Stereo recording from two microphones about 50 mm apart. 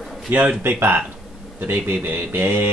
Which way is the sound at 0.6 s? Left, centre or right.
Right.